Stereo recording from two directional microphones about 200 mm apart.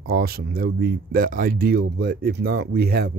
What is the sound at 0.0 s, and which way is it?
Speech, 50° right (ahead or behind).